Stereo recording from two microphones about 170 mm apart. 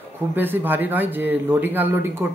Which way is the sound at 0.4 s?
10° right (ahead or behind).